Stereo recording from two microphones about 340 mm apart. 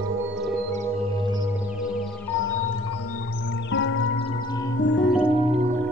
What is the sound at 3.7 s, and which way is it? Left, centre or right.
Music, left.